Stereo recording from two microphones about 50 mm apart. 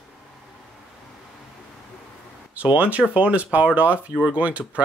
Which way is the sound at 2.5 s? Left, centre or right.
Right.